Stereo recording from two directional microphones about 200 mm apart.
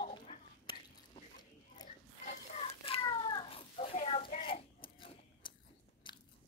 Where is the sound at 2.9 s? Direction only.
25° left (ahead or behind).